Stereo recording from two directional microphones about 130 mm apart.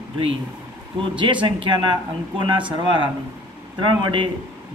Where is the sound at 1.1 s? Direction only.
40° right (ahead or behind).